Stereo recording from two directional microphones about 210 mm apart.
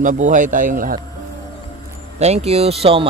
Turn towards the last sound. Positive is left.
turn(degrees=-25)  # may be behind; listen again after turning